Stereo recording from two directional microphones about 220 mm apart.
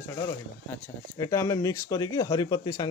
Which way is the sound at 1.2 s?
15° left (ahead or behind).